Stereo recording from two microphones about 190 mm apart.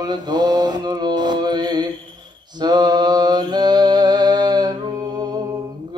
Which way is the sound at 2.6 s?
20° right (ahead or behind).